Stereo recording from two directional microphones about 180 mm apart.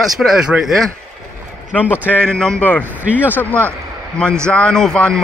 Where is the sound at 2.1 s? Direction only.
5° left (ahead or behind).